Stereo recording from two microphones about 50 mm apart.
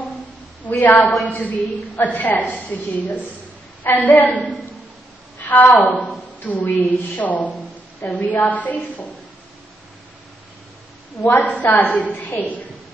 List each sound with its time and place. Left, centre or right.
0.7 s a woman's voice: left
5.4 s a sound: left
5.8 s a woman's voice: left
11.2 s a woman's voice: left